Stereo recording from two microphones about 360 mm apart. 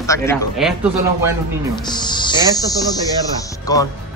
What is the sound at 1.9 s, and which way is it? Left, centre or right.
Speech, centre.